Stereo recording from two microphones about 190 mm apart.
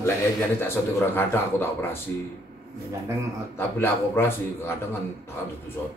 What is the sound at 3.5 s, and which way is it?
A man's voice, 10° left (ahead or behind).